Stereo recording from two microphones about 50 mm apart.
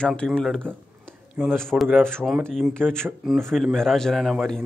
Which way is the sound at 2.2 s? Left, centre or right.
Centre.